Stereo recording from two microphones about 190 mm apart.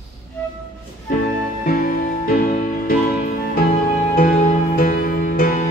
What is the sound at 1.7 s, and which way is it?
Music, 50° left (ahead or behind).